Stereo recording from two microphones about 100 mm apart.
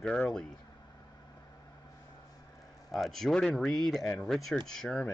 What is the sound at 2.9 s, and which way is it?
A man's voice, centre (ahead or behind).